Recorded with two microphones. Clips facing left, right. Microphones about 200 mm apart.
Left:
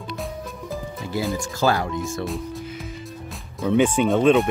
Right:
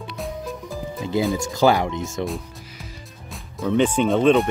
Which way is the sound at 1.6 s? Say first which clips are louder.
Right 4 dB; 20° right (ahead or behind).